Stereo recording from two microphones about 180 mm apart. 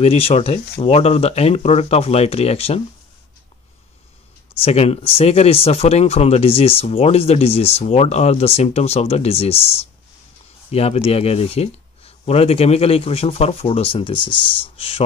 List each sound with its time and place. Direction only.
0.0 s speech: 35° left (ahead or behind)
4.6 s speech: 35° left (ahead or behind)